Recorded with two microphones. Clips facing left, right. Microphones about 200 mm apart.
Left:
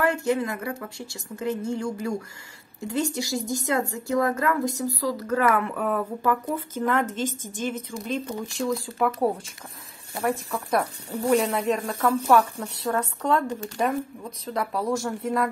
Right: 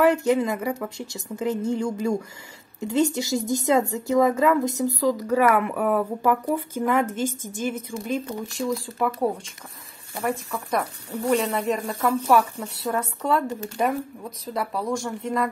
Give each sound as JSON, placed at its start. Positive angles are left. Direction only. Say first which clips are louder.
{"t": 0.2, "sound": "speech", "louder": "right 3 dB", "side_deg": -15}